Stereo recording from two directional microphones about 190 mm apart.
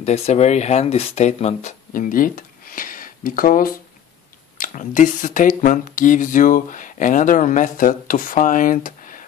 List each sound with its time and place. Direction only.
0.0 s speech: 35° left (ahead or behind)